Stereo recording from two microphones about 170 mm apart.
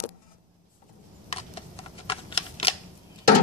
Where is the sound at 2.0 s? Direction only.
35° left (ahead or behind).